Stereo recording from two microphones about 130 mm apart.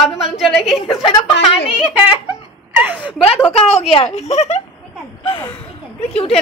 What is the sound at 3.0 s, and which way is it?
A woman's voice, 45° left (ahead or behind).